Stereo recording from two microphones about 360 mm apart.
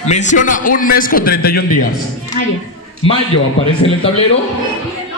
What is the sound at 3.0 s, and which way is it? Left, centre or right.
A man's voice, centre.